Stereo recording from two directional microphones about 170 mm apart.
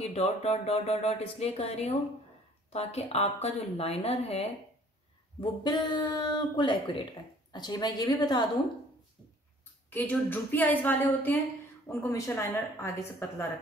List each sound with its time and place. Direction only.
0.0 s speech: 35° left (ahead or behind)
5.4 s speech: 25° left (ahead or behind)
9.8 s speech: 10° left (ahead or behind)